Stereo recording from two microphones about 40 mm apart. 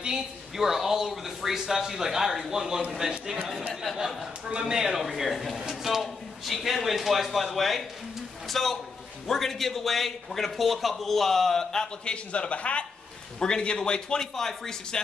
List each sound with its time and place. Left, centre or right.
0.6 s speech: centre
5.0 s a man's voice: centre